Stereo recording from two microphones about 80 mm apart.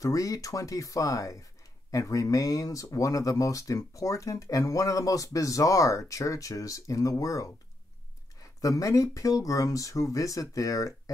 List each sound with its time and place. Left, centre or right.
0.0 s speech: left